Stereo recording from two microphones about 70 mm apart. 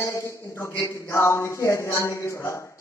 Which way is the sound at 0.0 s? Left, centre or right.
Left.